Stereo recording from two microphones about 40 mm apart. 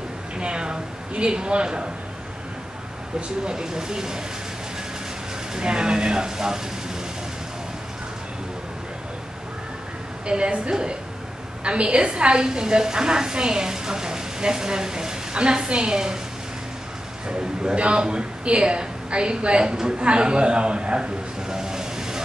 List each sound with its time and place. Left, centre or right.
0.4 s a woman's voice: right
3.2 s speech: centre
5.5 s a woman's voice: right
10.2 s a woman's voice: right
17.3 s a woman's voice: right
21.5 s vehicle: centre